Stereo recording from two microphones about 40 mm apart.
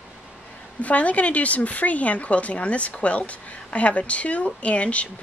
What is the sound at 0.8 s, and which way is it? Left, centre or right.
Speech, left.